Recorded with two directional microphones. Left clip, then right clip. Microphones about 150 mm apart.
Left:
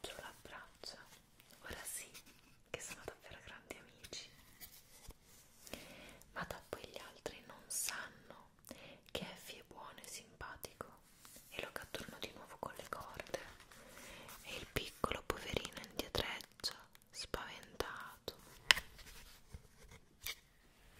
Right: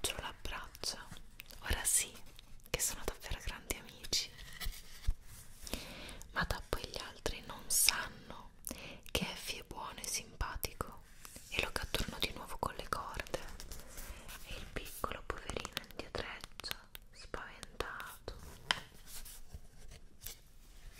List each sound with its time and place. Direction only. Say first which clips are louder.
0.0 s whispering: right 9 dB; 50° right (ahead or behind)
5.7 s whispering: right 7 dB; 35° right (ahead or behind)
14.1 s whispering: left 2 dB; 40° left (ahead or behind)